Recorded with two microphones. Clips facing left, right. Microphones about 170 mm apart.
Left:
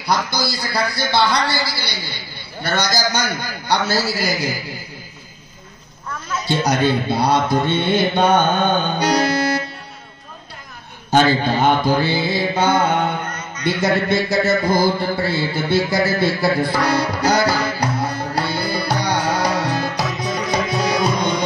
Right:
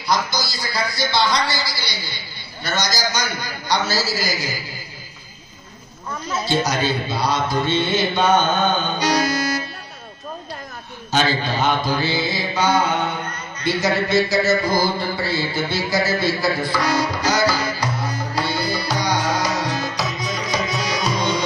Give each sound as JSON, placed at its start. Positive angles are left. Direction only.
{"t": 0.0, "sound": "a man's voice", "side_deg": 60}
{"t": 6.6, "sound": "a man's voice", "side_deg": 60}
{"t": 8.9, "sound": "accordion", "side_deg": 60}
{"t": 11.1, "sound": "a man's voice", "side_deg": 55}
{"t": 15.2, "sound": "music", "side_deg": 55}